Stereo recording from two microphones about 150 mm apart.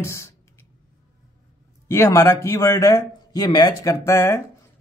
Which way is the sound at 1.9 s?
15° left (ahead or behind).